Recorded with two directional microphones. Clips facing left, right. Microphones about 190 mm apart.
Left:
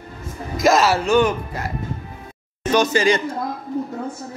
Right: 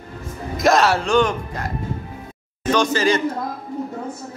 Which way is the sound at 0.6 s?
Centre (ahead or behind).